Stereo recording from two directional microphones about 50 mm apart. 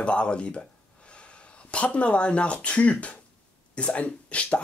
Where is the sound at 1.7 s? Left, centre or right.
Left.